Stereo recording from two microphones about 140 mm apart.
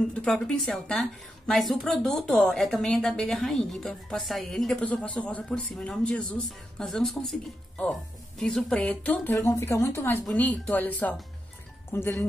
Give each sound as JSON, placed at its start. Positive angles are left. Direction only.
{"t": 0.0, "sound": "a woman's voice", "side_deg": 5}
{"t": 9.3, "sound": "a woman's voice", "side_deg": 20}